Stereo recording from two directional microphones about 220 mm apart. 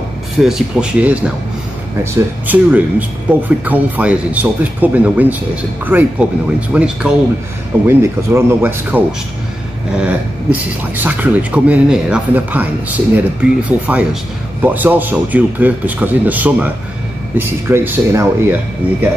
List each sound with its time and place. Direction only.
0.4 s speech: centre (ahead or behind)
2.4 s speech: 10° right (ahead or behind)
10.0 s speech: 5° right (ahead or behind)